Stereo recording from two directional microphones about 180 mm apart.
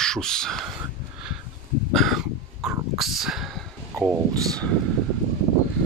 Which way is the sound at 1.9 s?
Centre (ahead or behind).